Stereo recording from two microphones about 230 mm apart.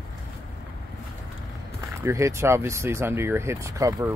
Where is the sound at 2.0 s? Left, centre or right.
Centre.